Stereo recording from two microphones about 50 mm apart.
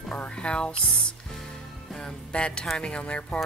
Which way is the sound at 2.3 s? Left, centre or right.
Left.